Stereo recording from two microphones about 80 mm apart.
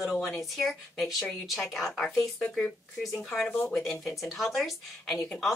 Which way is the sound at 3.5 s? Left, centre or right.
Centre.